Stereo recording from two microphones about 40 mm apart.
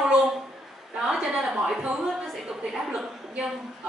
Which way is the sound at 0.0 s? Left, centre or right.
Centre.